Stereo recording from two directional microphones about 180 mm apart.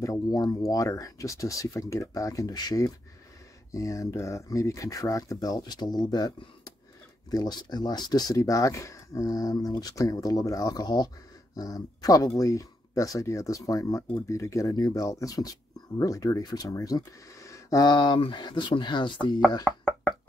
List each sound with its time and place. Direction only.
0.0 s speech: 20° left (ahead or behind)
19.7 s speech: 5° left (ahead or behind)